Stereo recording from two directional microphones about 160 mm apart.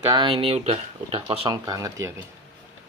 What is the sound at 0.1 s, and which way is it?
Speech, 30° right (ahead or behind).